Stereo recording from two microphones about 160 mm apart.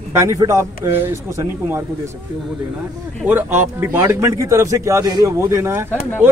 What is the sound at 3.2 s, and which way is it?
A man's voice, 15° right (ahead or behind).